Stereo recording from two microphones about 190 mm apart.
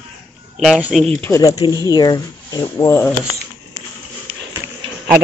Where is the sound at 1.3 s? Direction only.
20° left (ahead or behind).